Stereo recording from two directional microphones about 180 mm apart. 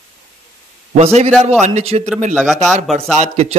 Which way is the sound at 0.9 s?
35° right (ahead or behind).